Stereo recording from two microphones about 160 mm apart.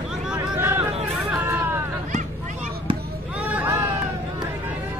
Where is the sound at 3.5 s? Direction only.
10° right (ahead or behind).